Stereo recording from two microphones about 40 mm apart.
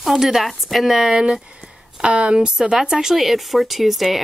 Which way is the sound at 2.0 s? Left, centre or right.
Right.